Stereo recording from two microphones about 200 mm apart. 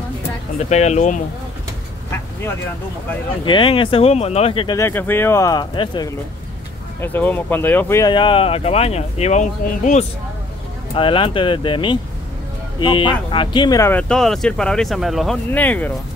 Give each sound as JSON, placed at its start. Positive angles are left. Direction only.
{"t": 0.6, "sound": "speech", "side_deg": 35}
{"t": 3.4, "sound": "speech", "side_deg": 25}
{"t": 4.7, "sound": "speech", "side_deg": 10}
{"t": 7.0, "sound": "speech", "side_deg": 10}
{"t": 8.1, "sound": "speech", "side_deg": 25}
{"t": 11.0, "sound": "speech", "side_deg": 25}